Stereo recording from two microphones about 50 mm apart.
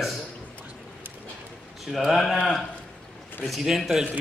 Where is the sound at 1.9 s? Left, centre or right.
Centre.